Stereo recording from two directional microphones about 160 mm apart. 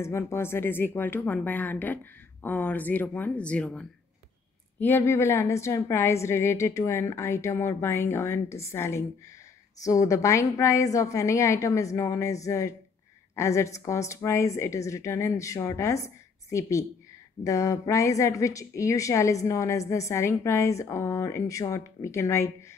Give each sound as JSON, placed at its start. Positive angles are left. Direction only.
{"t": 0.0, "sound": "a woman's voice", "side_deg": 15}